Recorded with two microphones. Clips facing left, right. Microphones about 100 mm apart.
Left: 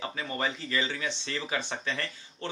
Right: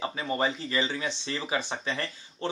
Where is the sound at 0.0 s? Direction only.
25° right (ahead or behind).